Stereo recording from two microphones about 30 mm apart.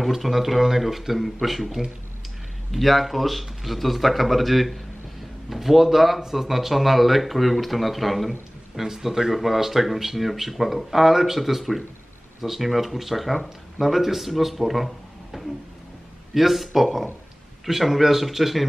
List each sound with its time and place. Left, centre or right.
0.0 s speech: centre
8.7 s speech: centre
15.3 s a sound: centre
16.3 s speech: centre